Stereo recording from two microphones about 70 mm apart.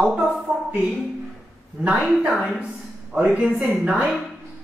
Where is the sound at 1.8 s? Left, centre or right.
Centre.